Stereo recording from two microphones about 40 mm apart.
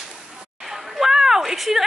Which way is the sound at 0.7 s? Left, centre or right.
Centre.